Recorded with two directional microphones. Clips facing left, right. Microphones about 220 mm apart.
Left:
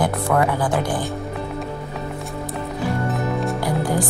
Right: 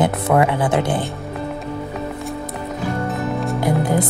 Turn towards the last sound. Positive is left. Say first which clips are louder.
# right 3 dB
turn(degrees=-20)  # may be behind; listen again after turning